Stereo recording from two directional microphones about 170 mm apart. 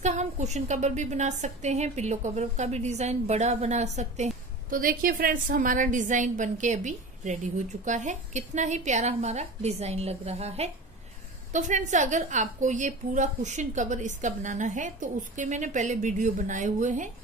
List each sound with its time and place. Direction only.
0.0 s a woman's voice: 40° right (ahead or behind)